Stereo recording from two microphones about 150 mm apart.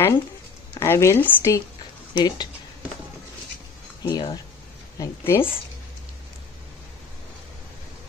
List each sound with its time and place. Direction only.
0.7 s speech: 20° left (ahead or behind)
4.0 s speech: 30° left (ahead or behind)
4.9 s speech: 20° left (ahead or behind)